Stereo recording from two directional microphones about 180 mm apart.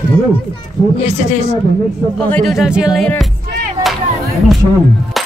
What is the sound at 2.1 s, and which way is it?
Speech, 5° left (ahead or behind).